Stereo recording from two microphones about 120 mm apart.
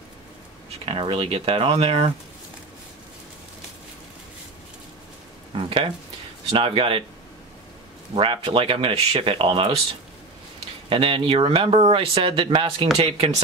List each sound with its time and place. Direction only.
0.8 s speech: 45° right (ahead or behind)
5.5 s a sound: 45° right (ahead or behind)
6.5 s speech: 50° right (ahead or behind)
8.1 s speech: 50° right (ahead or behind)
10.9 s speech: 45° right (ahead or behind)